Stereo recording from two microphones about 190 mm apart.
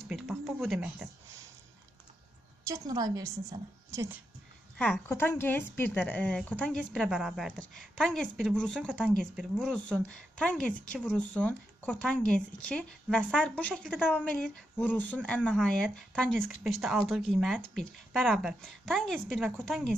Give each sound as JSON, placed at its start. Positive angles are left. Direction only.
{"t": 0.1, "sound": "a sound", "side_deg": 0}
{"t": 2.6, "sound": "a woman's voice", "side_deg": -15}
{"t": 4.7, "sound": "speech", "side_deg": 5}